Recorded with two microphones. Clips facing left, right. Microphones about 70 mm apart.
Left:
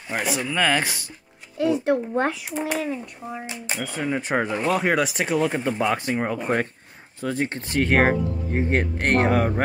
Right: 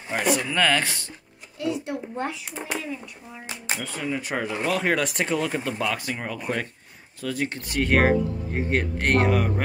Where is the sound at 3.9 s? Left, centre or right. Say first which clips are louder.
Left 6 dB; left.